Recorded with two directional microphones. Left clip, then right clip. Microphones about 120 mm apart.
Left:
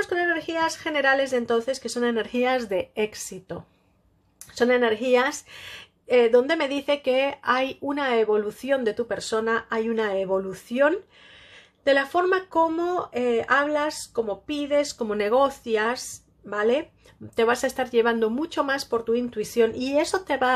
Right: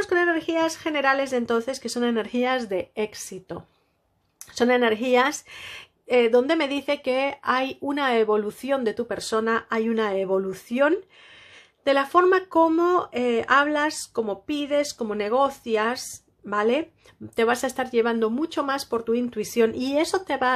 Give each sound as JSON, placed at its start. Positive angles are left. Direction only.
{"t": 0.0, "sound": "speech", "side_deg": -30}
{"t": 4.6, "sound": "speech", "side_deg": -30}
{"t": 15.0, "sound": "speech", "side_deg": -10}